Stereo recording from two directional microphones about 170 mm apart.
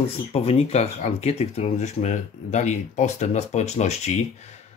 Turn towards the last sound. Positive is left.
turn(degrees=40)  # may be behind; listen again after turning